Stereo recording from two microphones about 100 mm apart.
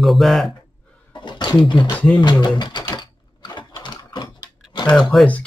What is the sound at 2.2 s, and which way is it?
Speech, 45° left (ahead or behind).